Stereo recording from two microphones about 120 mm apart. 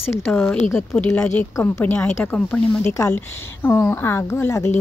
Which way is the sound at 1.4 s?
20° left (ahead or behind).